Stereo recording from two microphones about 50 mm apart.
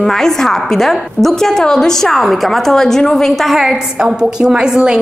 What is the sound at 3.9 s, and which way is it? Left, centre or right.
A woman's voice, centre.